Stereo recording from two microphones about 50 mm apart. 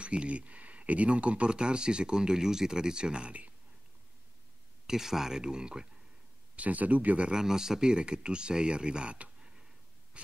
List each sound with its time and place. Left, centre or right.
0.0 s speech: right
4.8 s speech: centre
6.5 s speech: right
7.2 s speech: centre
10.1 s a sound: right